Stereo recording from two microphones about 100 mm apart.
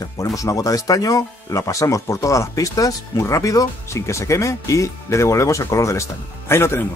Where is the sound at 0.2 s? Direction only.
35° left (ahead or behind).